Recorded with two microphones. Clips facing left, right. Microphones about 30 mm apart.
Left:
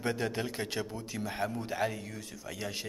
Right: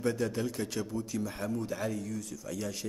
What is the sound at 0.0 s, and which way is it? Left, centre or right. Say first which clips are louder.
A man's voice: right 2 dB; left.